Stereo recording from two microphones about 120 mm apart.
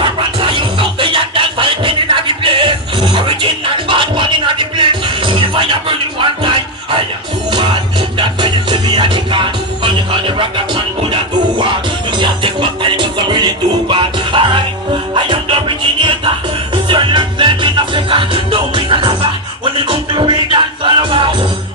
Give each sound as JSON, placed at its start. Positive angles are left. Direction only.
{"t": 0.0, "sound": "music", "side_deg": -45}
{"t": 8.2, "sound": "music", "side_deg": -45}